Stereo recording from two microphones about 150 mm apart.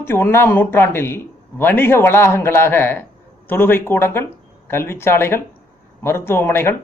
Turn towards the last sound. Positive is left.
turn(degrees=15)  # may be behind; listen again after turning